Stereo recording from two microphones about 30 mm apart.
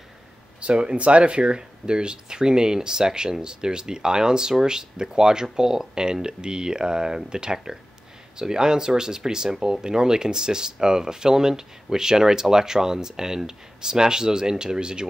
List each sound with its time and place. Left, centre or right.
0.6 s speech: right